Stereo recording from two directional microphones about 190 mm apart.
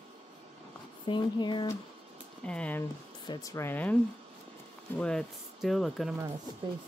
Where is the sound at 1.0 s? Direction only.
25° left (ahead or behind).